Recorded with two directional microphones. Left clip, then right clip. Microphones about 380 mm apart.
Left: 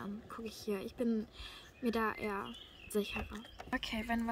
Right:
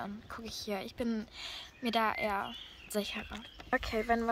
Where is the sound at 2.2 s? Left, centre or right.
Right.